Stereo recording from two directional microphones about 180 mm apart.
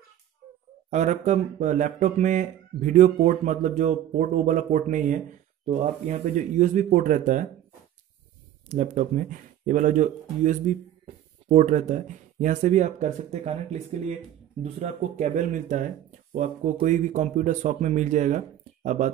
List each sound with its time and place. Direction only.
0.8 s speech: 40° right (ahead or behind)
8.6 s speech: 40° right (ahead or behind)